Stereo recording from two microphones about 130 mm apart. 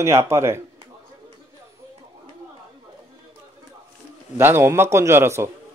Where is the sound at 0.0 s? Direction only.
20° right (ahead or behind).